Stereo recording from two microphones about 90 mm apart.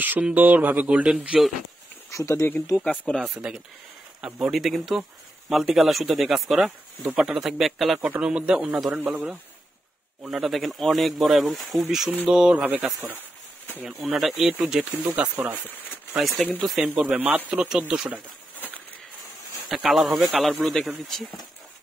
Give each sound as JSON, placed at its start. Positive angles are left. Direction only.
{"t": 0.0, "sound": "speech", "side_deg": -15}
{"t": 2.0, "sound": "speech", "side_deg": 35}
{"t": 2.8, "sound": "speech", "side_deg": 10}
{"t": 3.2, "sound": "a man's voice", "side_deg": -5}
{"t": 10.2, "sound": "speech", "side_deg": 0}
{"t": 12.1, "sound": "speech", "side_deg": -15}
{"t": 14.1, "sound": "speech", "side_deg": -5}
{"t": 14.9, "sound": "speech", "side_deg": -15}
{"t": 19.7, "sound": "speech", "side_deg": -5}